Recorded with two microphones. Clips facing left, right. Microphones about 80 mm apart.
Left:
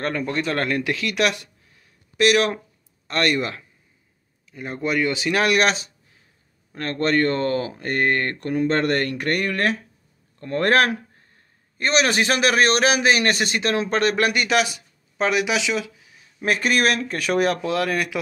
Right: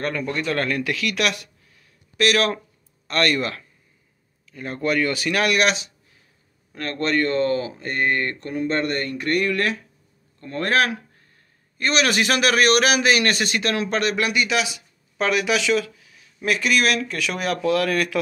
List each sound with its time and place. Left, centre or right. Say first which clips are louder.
0.0 s a man's voice: left 1 dB; left
9.3 s speech: right 2 dB; left
10.4 s speech: left 3 dB; left
11.8 s a man's voice: left 1 dB; left
15.1 s speech: even; centre